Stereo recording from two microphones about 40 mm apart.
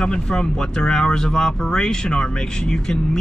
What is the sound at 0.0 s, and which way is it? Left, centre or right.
Speech, left.